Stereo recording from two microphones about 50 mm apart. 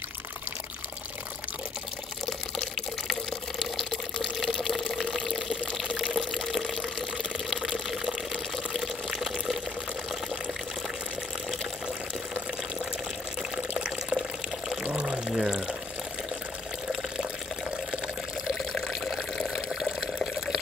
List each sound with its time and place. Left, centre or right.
2.2 s water: centre
8.7 s water: centre
13.6 s water: centre
15.3 s pour: centre
18.7 s water: centre